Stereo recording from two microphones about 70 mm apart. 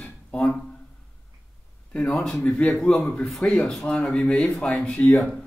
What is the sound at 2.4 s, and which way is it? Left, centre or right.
Speech, left.